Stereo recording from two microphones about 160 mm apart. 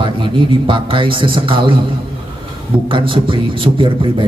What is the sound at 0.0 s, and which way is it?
Speech, 30° right (ahead or behind).